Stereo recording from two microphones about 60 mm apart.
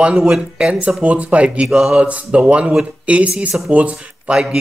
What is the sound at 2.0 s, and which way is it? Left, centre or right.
Speech, centre.